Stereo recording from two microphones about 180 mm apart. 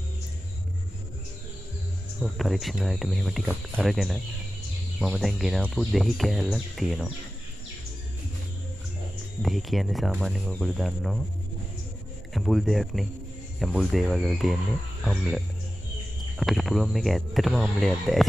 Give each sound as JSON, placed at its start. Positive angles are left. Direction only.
{"t": 2.1, "sound": "speech", "side_deg": 0}
{"t": 9.4, "sound": "speech", "side_deg": 0}
{"t": 12.4, "sound": "speech", "side_deg": 0}